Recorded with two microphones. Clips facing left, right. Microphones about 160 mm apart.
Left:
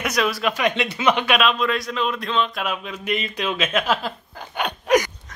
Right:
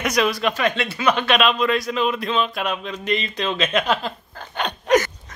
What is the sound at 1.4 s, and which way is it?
Speech, centre (ahead or behind).